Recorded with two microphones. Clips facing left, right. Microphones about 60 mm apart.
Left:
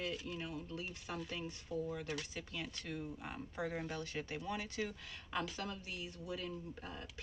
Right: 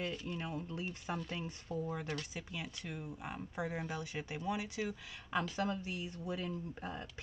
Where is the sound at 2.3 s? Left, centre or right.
Centre.